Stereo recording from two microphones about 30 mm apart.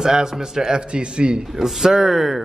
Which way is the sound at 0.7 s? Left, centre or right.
Right.